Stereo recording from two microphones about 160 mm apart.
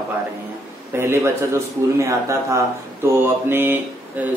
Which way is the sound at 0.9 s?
15° right (ahead or behind).